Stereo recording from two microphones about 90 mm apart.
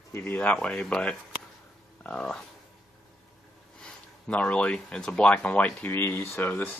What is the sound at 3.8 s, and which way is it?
Speech, 10° left (ahead or behind).